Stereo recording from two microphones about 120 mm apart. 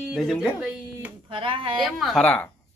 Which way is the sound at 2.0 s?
5° left (ahead or behind).